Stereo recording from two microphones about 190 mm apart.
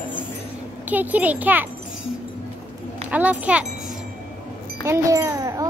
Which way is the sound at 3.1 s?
10° right (ahead or behind).